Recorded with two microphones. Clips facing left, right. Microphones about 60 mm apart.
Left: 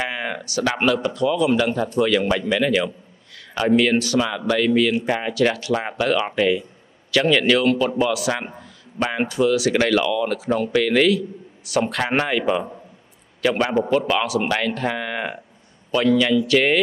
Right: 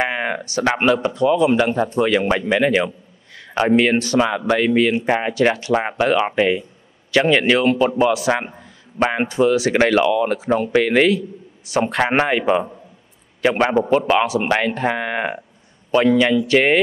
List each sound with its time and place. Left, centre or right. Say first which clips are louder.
0.0 s a man's voice: right 5 dB; right